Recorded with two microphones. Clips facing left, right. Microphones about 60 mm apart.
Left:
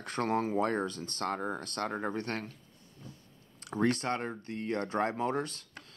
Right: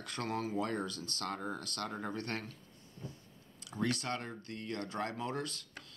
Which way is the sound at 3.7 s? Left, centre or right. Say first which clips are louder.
Left 6 dB; left.